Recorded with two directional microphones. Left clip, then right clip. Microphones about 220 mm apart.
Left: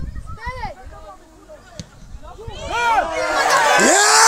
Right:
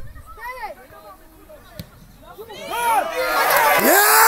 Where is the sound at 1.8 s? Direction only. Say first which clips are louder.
Left 1 dB; 5° left (ahead or behind).